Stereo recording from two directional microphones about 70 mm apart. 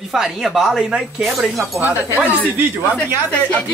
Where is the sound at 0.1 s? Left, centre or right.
Centre.